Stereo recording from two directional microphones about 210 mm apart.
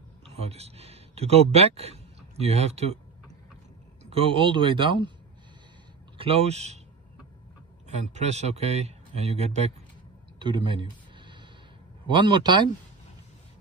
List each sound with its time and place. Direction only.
0.4 s speech: 30° right (ahead or behind)
4.0 s speech: 25° right (ahead or behind)
6.1 s speech: 25° right (ahead or behind)
8.1 s speech: 30° right (ahead or behind)
10.4 s a sound: 25° right (ahead or behind)
12.1 s speech: 20° right (ahead or behind)